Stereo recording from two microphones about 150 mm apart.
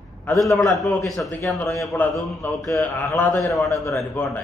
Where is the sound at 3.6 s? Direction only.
Centre (ahead or behind).